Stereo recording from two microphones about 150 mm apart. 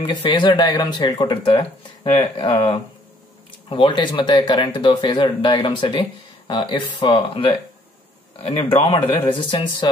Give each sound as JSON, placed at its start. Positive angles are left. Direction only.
{"t": 0.0, "sound": "speech", "side_deg": 30}